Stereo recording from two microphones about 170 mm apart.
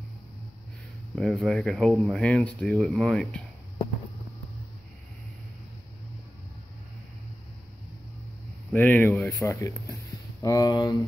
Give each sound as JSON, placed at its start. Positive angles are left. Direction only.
{"t": 1.1, "sound": "speech", "side_deg": 0}
{"t": 8.7, "sound": "speech", "side_deg": 10}